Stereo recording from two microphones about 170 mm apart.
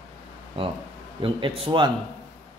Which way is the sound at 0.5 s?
30° right (ahead or behind).